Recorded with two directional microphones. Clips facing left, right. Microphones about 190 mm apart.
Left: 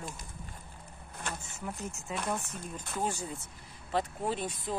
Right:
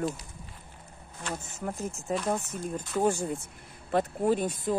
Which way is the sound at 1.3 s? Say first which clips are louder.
Right 10 dB; 50° right (ahead or behind).